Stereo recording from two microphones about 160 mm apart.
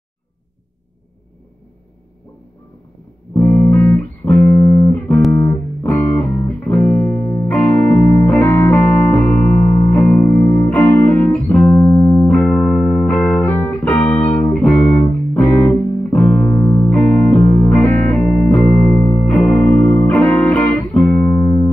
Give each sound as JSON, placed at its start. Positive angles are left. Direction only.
{"t": 3.3, "sound": "music", "side_deg": 20}
{"t": 17.0, "sound": "music", "side_deg": 5}
{"t": 18.9, "sound": "music", "side_deg": 20}